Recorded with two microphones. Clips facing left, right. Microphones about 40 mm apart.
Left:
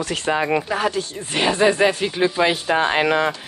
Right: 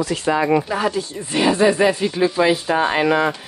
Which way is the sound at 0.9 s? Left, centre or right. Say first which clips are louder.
Right 2 dB; left.